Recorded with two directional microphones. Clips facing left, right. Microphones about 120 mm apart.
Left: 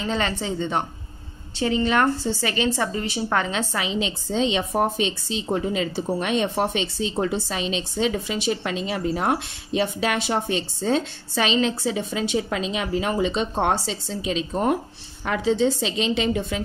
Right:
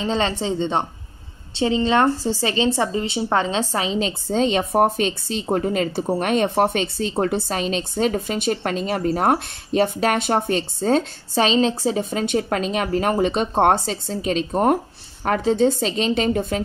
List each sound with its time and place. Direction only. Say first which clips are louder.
0.0 s a woman's voice: right 3 dB; 25° right (ahead or behind); by 16.6 s 45° right (ahead or behind)